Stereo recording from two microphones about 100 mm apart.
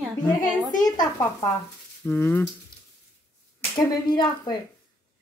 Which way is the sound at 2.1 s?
20° left (ahead or behind).